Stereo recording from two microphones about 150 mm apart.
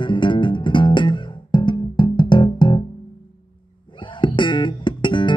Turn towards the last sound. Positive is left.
turn(degrees=30)  # may be behind; listen again after turning